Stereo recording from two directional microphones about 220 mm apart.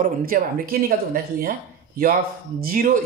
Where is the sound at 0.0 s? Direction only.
40° right (ahead or behind).